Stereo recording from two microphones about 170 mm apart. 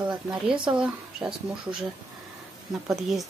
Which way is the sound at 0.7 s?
5° right (ahead or behind).